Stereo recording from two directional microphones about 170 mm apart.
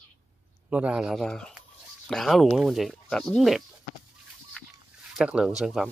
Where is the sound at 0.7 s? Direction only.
5° right (ahead or behind).